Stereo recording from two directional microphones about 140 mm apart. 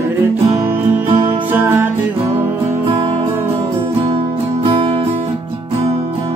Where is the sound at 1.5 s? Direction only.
15° right (ahead or behind).